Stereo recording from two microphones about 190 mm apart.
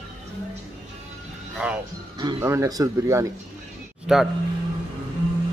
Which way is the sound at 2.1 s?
20° right (ahead or behind).